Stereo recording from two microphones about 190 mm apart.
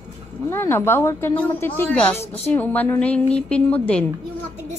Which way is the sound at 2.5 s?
10° left (ahead or behind).